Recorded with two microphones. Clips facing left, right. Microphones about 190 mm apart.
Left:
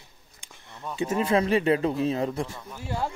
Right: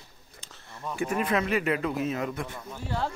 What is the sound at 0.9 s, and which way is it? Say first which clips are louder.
Speech: left 3 dB; 25° left (ahead or behind).